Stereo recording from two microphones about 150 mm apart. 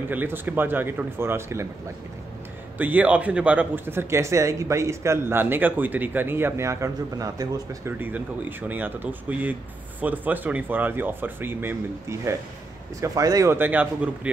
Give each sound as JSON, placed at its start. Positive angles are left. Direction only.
{"t": 0.1, "sound": "speech", "side_deg": -10}
{"t": 2.8, "sound": "speech", "side_deg": -10}
{"t": 8.0, "sound": "speech", "side_deg": -15}